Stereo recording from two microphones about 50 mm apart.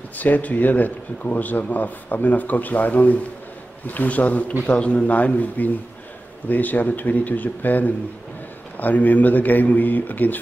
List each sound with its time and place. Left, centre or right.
0.2 s a man's voice: left